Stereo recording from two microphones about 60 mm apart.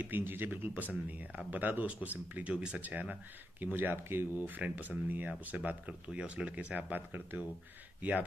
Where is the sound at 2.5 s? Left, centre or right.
Centre; by 4.2 s right.